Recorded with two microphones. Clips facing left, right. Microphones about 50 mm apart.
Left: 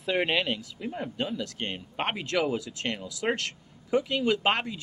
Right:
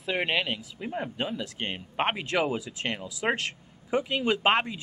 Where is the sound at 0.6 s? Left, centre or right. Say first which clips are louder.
Right 1 dB; centre.